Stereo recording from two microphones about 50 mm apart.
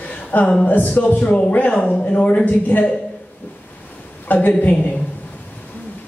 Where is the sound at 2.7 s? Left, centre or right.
Left.